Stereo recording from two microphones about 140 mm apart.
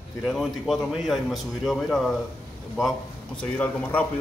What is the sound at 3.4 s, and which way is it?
Speech, 10° left (ahead or behind).